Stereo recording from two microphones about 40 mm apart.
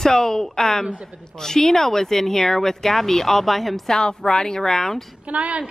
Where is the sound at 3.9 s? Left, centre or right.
Centre.